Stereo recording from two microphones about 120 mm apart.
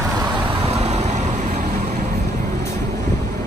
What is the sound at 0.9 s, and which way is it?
Vehicle, 70° right (ahead or behind).